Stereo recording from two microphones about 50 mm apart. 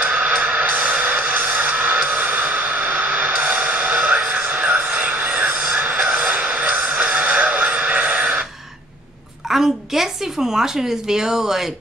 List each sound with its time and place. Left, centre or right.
0.0 s music: right
4.5 s a sound: right
5.9 s music: right
9.5 s a woman's voice: centre